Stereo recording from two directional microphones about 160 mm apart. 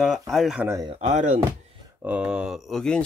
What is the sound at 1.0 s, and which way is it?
Speech, 50° right (ahead or behind).